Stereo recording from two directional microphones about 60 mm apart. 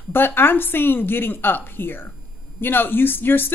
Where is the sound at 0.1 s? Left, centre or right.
Left.